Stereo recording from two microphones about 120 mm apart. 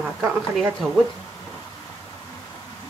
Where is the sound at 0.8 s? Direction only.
5° right (ahead or behind).